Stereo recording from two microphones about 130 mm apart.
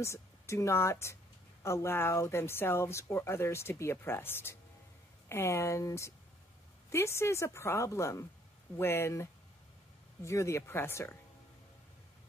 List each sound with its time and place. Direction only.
0.0 s a woman's voice: 20° left (ahead or behind)